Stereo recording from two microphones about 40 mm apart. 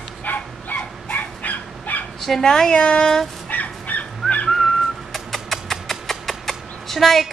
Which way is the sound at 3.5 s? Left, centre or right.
Left.